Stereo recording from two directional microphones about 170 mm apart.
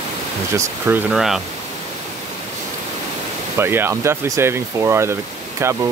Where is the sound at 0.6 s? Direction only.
15° right (ahead or behind).